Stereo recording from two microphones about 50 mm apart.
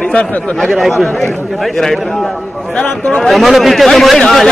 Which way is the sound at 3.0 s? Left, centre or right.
Centre.